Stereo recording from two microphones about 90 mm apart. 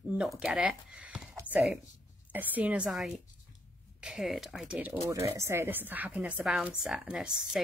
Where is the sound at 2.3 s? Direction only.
20° right (ahead or behind).